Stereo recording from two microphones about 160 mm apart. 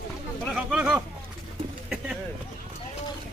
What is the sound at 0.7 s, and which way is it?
Speech, 5° right (ahead or behind).